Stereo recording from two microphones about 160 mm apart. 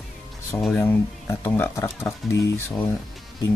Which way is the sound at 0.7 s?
10° left (ahead or behind).